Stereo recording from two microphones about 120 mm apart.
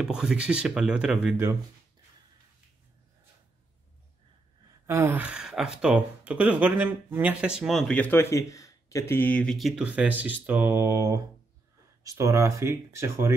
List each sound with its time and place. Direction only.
0.0 s speech: 5° right (ahead or behind)
1.3 s speech: 25° right (ahead or behind)
4.8 s speech: 20° right (ahead or behind)
7.9 s speech: 15° left (ahead or behind)
9.4 s speech: centre (ahead or behind); by 13.3 s 20° right (ahead or behind)